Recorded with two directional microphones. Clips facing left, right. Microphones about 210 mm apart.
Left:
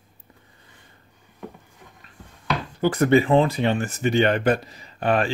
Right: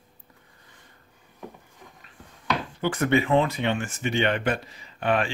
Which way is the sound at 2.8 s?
35° left (ahead or behind).